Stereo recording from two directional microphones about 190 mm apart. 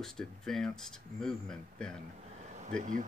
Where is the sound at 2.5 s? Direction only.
40° right (ahead or behind).